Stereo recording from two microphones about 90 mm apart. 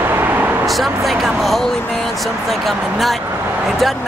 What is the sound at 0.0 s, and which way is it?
Vehicle, 25° right (ahead or behind).